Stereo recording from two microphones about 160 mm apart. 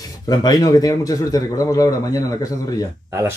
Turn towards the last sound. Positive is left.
turn(degrees=-15)  # may be behind; listen again after turning